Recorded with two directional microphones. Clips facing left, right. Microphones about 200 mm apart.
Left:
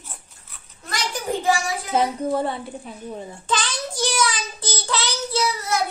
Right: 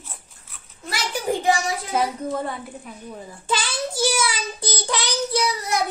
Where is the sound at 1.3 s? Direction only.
15° right (ahead or behind).